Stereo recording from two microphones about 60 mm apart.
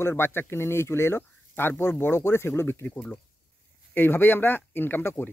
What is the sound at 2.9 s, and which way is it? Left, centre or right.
Speech, left.